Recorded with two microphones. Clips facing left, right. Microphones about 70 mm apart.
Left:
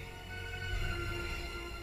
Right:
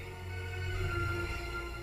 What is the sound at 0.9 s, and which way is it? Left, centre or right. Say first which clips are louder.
Music: right 7 dB; right.